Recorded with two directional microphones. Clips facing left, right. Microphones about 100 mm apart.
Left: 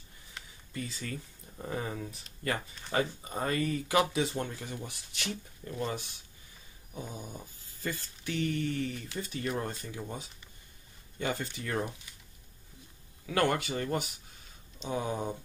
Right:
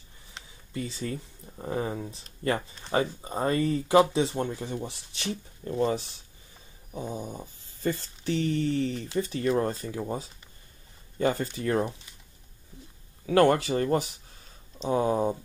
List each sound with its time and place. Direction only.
0.3 s speech: 30° right (ahead or behind)
6.9 s dog: 30° right (ahead or behind)
13.3 s dog: 35° right (ahead or behind)